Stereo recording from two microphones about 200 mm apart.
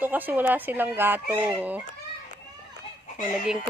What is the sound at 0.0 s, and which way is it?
Speech, 10° right (ahead or behind).